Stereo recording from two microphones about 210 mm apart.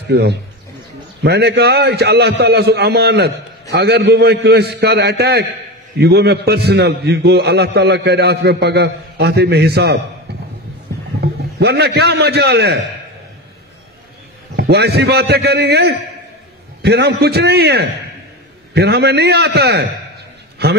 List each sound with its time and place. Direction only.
0.1 s a man's voice: 50° right (ahead or behind)
11.1 s a man's voice: 50° right (ahead or behind)
14.6 s a man's voice: 50° right (ahead or behind)